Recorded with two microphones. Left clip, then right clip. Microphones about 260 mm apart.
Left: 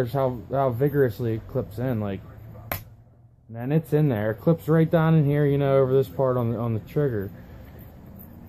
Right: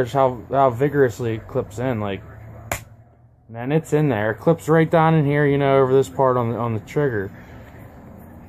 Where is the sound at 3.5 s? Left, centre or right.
Right.